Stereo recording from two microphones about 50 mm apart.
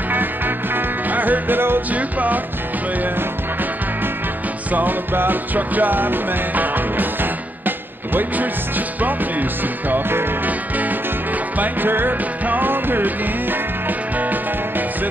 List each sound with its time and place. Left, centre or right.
0.7 s music: right
1.9 s music: right
4.7 s music: right
11.5 s music: right